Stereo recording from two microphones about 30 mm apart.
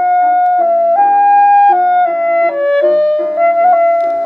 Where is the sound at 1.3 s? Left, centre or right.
Left.